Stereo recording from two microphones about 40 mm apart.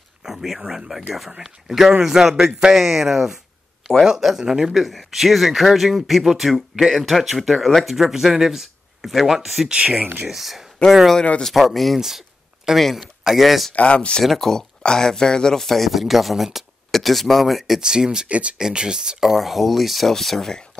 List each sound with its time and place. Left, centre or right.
0.2 s speech: centre
4.8 s speech: centre
9.7 s speech: right
10.2 s speech: centre
10.8 s speech: left
11.5 s speech: centre
13.7 s speech: left
14.2 s speech: centre
17.7 s speech: centre
18.3 s speech: right
18.6 s speech: centre